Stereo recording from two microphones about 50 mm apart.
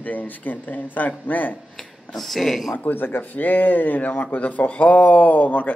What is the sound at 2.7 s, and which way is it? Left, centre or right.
Speech, left.